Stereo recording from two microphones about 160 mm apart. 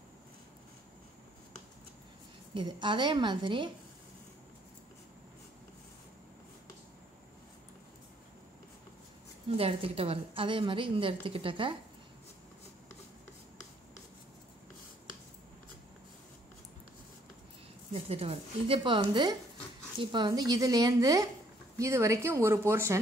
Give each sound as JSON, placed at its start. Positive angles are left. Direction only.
{"t": 2.5, "sound": "a woman's voice", "side_deg": -30}
{"t": 9.6, "sound": "a woman's voice", "side_deg": -35}
{"t": 17.9, "sound": "a woman's voice", "side_deg": -40}